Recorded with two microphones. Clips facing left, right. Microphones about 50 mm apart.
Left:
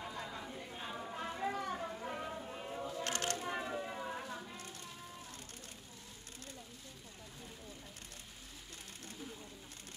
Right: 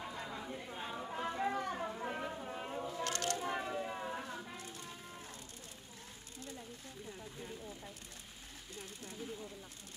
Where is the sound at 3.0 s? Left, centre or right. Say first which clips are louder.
Right 1 dB; left.